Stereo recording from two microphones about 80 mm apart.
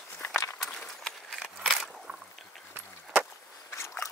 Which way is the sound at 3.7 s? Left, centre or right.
Left.